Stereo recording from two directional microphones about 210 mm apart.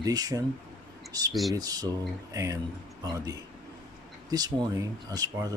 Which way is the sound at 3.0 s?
15° right (ahead or behind).